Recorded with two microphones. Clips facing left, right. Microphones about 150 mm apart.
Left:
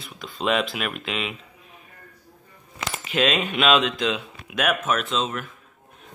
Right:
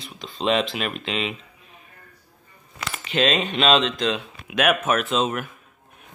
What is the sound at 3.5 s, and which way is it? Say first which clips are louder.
Speech: even; 30° right (ahead or behind).